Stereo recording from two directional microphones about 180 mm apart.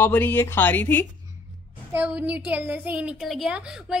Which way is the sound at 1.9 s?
5° right (ahead or behind).